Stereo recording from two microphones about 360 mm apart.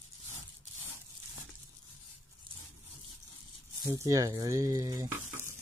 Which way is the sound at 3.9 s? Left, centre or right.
Centre.